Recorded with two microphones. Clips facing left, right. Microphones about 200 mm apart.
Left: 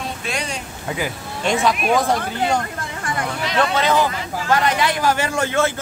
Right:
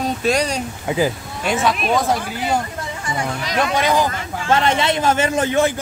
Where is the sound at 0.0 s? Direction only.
40° right (ahead or behind).